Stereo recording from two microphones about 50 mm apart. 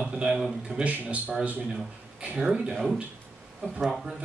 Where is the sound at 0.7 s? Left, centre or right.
Right.